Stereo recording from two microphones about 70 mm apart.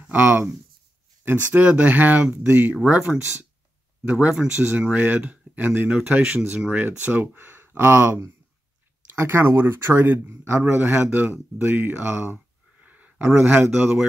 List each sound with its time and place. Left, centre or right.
0.0 s speech: right
12.8 s a sound: right
13.5 s speech: right